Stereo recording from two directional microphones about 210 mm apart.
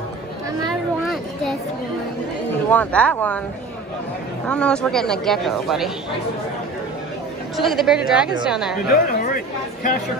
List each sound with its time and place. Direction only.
2.7 s speech: 5° left (ahead or behind)
4.5 s speech: 5° left (ahead or behind)
7.5 s speech: centre (ahead or behind)
8.8 s speech: 40° left (ahead or behind)